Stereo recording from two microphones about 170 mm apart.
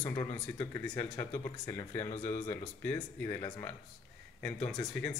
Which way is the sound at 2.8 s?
15° left (ahead or behind).